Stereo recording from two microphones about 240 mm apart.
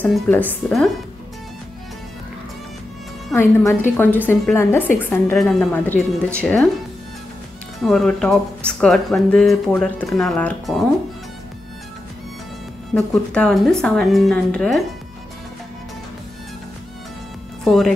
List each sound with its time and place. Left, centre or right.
0.0 s a woman's voice: centre
3.3 s a woman's voice: centre
7.8 s speech: centre
12.9 s speech: centre
17.6 s speech: centre